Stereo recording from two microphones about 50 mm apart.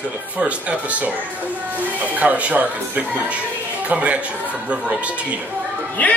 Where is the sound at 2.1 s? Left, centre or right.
Right.